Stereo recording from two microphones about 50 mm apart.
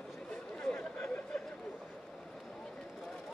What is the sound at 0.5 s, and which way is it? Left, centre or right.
Chatter, centre.